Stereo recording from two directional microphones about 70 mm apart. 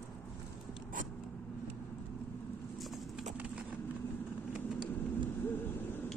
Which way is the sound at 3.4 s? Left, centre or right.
Right.